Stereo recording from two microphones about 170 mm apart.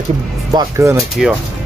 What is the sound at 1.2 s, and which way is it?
Speech, centre (ahead or behind).